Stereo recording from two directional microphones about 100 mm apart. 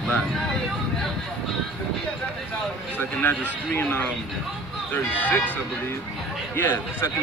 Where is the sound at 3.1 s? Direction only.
20° left (ahead or behind).